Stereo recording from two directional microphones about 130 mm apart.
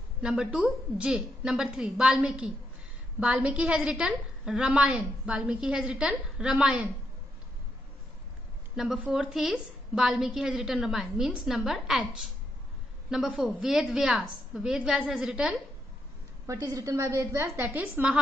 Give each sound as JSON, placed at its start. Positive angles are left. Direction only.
{"t": 0.2, "sound": "a woman's voice", "side_deg": -5}
{"t": 8.7, "sound": "a woman's voice", "side_deg": -5}
{"t": 16.4, "sound": "a woman's voice", "side_deg": -25}